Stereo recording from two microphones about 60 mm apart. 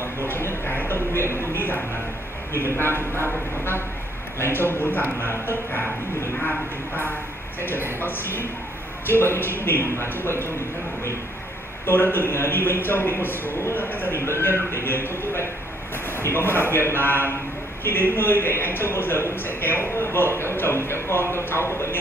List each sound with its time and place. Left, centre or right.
0.0 s a man's voice: left
8.0 s a man's voice: left
11.8 s a man's voice: left
14.2 s music: left
16.1 s a man's voice: left